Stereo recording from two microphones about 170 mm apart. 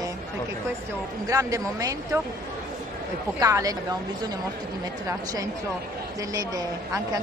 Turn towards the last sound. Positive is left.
turn(degrees=-20)  # may be behind; listen again after turning